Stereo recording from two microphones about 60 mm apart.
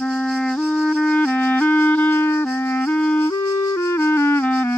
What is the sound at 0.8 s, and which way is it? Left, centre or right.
Music, centre.